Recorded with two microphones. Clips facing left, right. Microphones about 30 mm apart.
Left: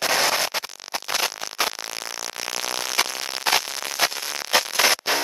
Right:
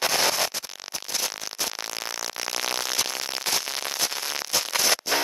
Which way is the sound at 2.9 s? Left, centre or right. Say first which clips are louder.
Left 4 dB; left.